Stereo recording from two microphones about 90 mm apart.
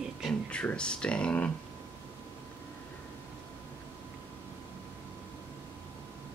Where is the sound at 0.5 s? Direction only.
10° left (ahead or behind).